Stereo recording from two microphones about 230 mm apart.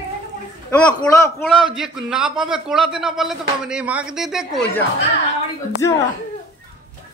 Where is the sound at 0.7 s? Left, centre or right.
Centre.